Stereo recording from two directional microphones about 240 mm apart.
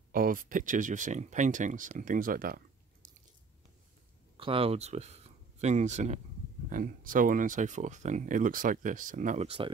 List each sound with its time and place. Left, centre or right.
0.1 s speech: right
4.4 s speech: right